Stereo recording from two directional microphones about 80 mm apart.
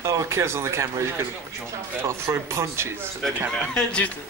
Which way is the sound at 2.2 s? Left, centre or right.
Right.